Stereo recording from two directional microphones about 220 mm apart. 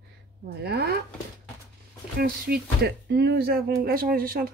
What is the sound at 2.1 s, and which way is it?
Speech, 45° right (ahead or behind).